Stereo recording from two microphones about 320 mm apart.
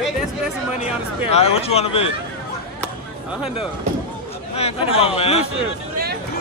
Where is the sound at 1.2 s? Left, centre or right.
Centre.